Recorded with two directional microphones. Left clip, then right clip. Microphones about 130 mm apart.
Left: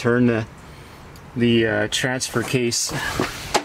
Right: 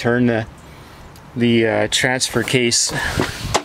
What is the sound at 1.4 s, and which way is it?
Speech, 15° right (ahead or behind).